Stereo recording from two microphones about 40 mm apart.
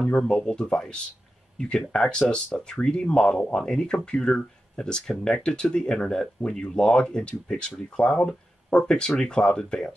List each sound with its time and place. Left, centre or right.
0.0 s speech: centre